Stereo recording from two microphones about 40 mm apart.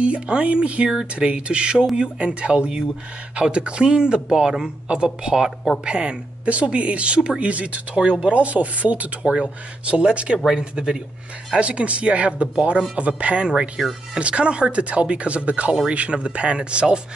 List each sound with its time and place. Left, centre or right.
0.0 s speech: right
13.5 s speech: centre